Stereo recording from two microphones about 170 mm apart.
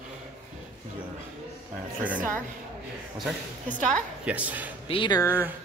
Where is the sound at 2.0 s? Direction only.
10° right (ahead or behind).